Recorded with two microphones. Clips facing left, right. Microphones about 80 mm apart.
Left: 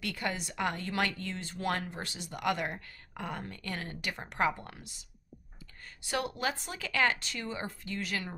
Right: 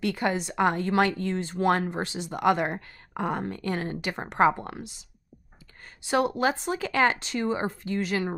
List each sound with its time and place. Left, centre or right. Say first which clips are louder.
0.0 s speech: right 9 dB; right
6.0 s speech: right 9 dB; right